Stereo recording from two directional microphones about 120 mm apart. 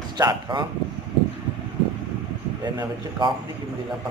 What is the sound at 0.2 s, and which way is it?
Speech, 40° right (ahead or behind).